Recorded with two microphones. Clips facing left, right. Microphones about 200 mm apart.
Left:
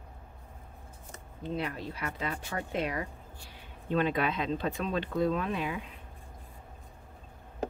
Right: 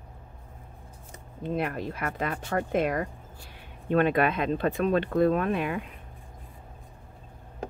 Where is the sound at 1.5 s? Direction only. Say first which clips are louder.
Right 5 dB; 55° right (ahead or behind).